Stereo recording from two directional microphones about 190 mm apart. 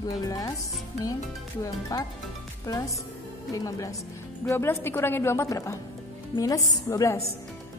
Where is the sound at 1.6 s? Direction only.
15° left (ahead or behind).